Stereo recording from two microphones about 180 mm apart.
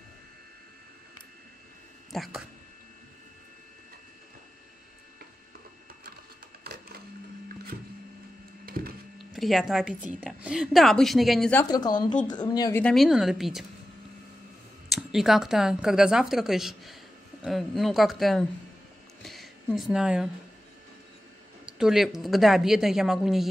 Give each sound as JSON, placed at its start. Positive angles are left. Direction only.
{"t": 2.1, "sound": "a woman's voice", "side_deg": 0}
{"t": 6.6, "sound": "printer", "side_deg": -60}
{"t": 8.6, "sound": "wood", "side_deg": -55}
{"t": 9.3, "sound": "a woman's voice", "side_deg": 0}
{"t": 11.7, "sound": "speech", "side_deg": 25}
{"t": 12.8, "sound": "a woman's voice", "side_deg": 0}
{"t": 14.9, "sound": "a woman's voice", "side_deg": 0}
{"t": 21.6, "sound": "a woman's voice", "side_deg": -5}